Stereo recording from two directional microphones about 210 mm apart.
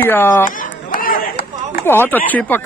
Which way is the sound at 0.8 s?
40° left (ahead or behind).